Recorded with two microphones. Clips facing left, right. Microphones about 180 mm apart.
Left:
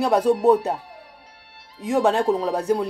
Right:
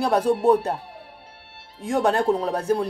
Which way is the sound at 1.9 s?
5° left (ahead or behind).